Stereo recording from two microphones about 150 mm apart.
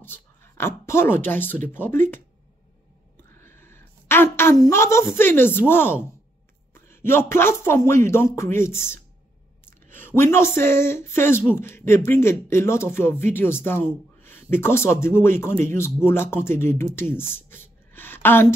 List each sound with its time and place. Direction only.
0.0 s speech: 15° left (ahead or behind)
3.3 s a sound: 15° left (ahead or behind)
5.7 s speech: 15° left (ahead or behind)